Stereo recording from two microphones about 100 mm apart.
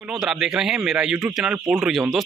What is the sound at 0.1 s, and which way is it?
A man's voice, 5° right (ahead or behind).